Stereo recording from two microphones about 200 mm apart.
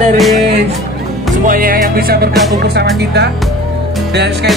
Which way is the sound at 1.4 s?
45° right (ahead or behind).